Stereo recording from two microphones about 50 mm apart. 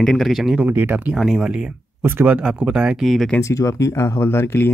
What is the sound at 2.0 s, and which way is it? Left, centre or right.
Speech, right.